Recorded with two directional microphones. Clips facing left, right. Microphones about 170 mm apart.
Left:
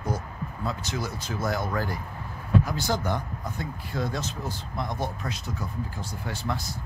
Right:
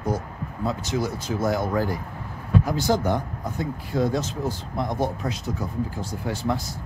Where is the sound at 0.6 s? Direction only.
20° right (ahead or behind).